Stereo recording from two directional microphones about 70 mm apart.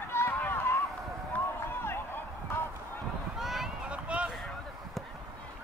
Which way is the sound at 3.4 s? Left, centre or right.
Centre.